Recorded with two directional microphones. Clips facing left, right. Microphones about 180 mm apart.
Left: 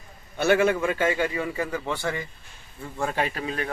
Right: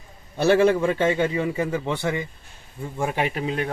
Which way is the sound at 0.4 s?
35° right (ahead or behind).